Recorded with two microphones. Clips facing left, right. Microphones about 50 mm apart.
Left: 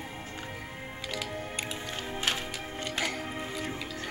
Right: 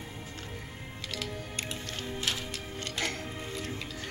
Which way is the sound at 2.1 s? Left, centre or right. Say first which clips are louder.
Left 2 dB; left.